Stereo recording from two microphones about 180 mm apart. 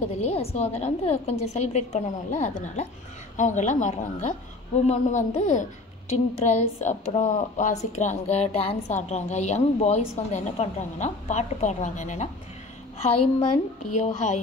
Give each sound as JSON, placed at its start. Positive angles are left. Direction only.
{"t": 0.2, "sound": "a woman's voice", "side_deg": 35}